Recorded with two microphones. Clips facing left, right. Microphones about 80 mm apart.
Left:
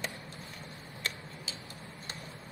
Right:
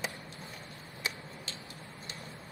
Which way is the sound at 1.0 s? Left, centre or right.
Centre.